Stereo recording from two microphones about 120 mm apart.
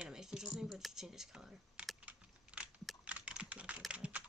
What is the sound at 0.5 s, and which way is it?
Computer keyboard, 5° right (ahead or behind).